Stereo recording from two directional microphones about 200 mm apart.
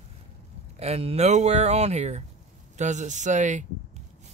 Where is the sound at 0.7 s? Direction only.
30° right (ahead or behind).